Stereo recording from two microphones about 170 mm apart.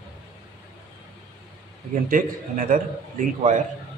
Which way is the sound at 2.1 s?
55° right (ahead or behind).